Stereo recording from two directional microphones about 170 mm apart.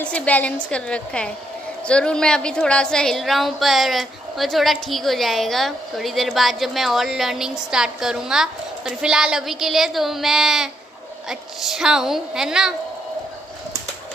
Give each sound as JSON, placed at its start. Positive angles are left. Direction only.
{"t": 0.0, "sound": "a woman's voice", "side_deg": 5}